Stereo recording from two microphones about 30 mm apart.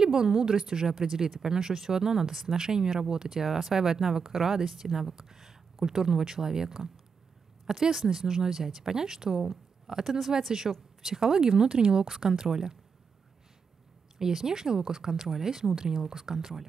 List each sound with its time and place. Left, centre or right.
0.0 s speech: right
7.9 s speech: centre
11.4 s speech: right
12.1 s speech: centre
14.2 s speech: centre